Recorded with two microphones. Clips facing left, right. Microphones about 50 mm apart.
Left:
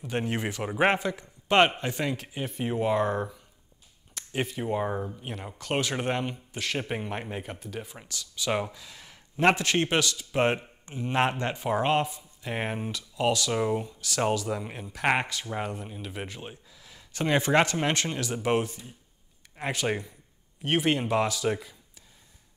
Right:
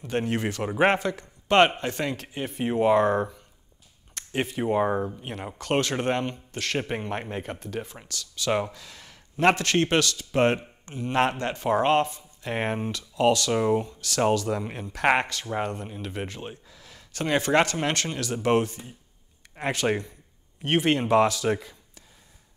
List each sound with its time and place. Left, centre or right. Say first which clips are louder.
0.0 s speech: right 3 dB; centre
0.7 s speech: right 2 dB; centre
0.9 s a man's voice: right 2 dB; centre
2.2 s speech: right 3 dB; centre
4.6 s speech: right 7 dB; centre
5.6 s speech: right 4 dB; centre
8.1 s speech: right 1 dB; centre
8.5 s speech: right 3 dB; centre
8.7 s a sound: right 1 dB; centre
9.6 s speech: right 3 dB; centre
13.5 s speech: right 4 dB; centre
13.8 s speech: right 4 dB; centre
16.8 s speech: even; centre